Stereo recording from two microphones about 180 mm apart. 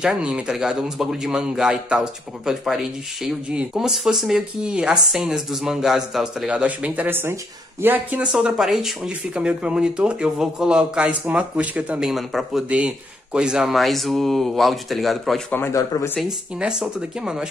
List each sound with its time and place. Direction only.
0.0 s speech: 5° right (ahead or behind)
15.5 s speech: 15° left (ahead or behind)
16.5 s speech: 5° right (ahead or behind)